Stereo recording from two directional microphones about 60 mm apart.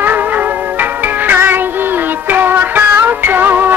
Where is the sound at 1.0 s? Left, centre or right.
Right.